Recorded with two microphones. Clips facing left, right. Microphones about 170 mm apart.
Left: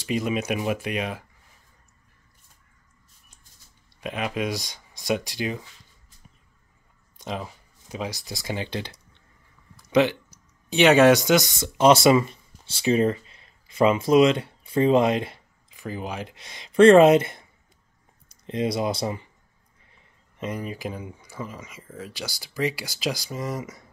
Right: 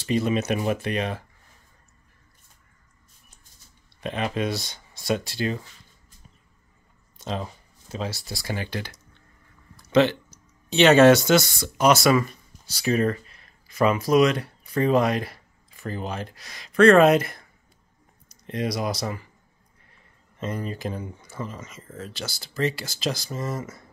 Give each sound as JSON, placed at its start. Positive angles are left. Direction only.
{"t": 0.0, "sound": "speech", "side_deg": 10}
{"t": 4.0, "sound": "speech", "side_deg": 10}
{"t": 7.2, "sound": "speech", "side_deg": 10}
{"t": 9.8, "sound": "speech", "side_deg": 10}
{"t": 16.3, "sound": "speech", "side_deg": 25}
{"t": 18.5, "sound": "speech", "side_deg": 25}
{"t": 20.3, "sound": "speech", "side_deg": 15}